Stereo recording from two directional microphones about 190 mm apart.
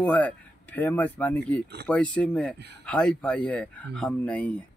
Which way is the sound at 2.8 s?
5° left (ahead or behind).